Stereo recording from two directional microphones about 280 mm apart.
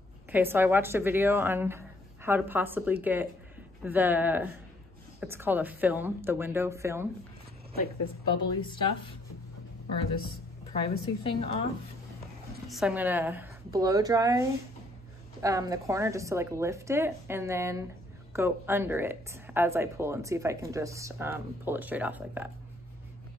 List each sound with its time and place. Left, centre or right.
0.3 s speech: centre
8.3 s a woman's voice: centre
10.7 s a woman's voice: centre
12.6 s speech: centre
15.4 s speech: centre